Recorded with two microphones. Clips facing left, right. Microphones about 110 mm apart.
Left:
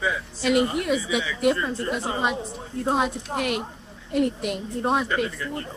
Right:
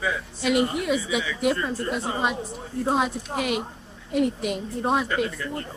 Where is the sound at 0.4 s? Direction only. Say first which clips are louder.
Left 1 dB; centre (ahead or behind).